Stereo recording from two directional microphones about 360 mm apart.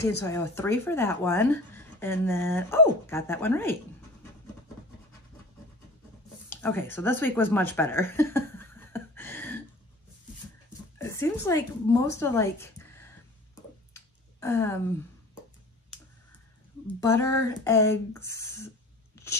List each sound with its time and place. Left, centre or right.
0.2 s speech: centre
6.5 s speech: centre
11.0 s speech: centre
13.9 s a sound: centre
16.8 s speech: centre